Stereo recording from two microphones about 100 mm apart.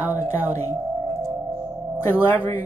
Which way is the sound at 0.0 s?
20° right (ahead or behind).